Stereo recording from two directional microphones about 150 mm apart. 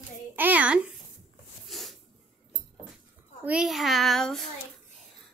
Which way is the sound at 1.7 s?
Centre (ahead or behind).